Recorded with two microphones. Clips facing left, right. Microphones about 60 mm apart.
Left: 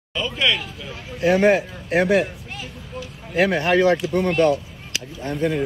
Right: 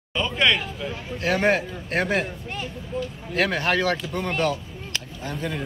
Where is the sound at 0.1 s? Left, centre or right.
Centre.